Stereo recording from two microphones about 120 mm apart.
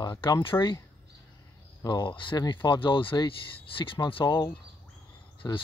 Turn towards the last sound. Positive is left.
turn(degrees=35)  # may be behind; listen again after turning